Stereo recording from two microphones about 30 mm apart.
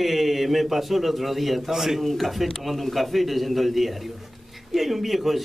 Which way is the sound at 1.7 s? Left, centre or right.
Centre.